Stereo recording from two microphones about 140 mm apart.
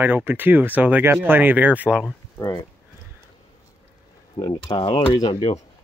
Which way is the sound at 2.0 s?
15° left (ahead or behind).